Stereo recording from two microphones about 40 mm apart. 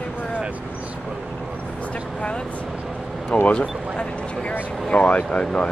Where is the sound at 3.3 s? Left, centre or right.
Left.